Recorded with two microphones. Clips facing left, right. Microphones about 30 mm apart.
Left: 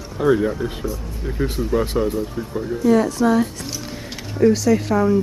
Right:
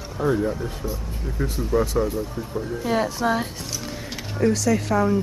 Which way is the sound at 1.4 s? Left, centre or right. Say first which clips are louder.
Left 2 dB; left.